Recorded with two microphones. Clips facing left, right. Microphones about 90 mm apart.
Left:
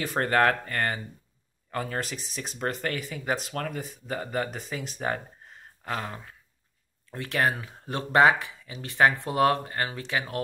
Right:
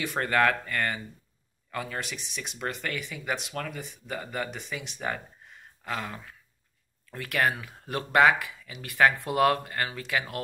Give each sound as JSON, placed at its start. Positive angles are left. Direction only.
{"t": 0.0, "sound": "speech", "side_deg": 40}